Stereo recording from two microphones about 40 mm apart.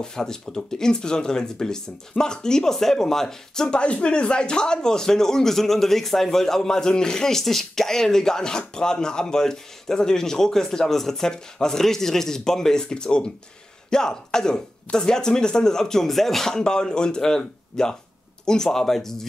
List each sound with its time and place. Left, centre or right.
0.0 s a man's voice: centre
3.8 s a man's voice: left; by 19.2 s centre